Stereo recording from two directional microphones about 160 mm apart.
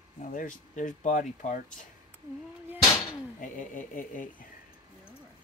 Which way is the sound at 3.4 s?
55° left (ahead or behind).